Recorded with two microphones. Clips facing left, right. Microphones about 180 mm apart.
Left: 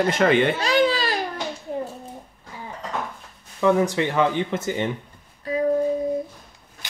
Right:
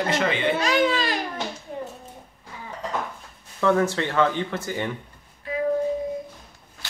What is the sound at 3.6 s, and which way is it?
Speech, 15° left (ahead or behind).